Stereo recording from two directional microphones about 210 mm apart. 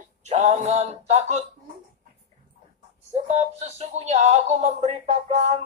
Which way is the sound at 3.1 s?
30° right (ahead or behind).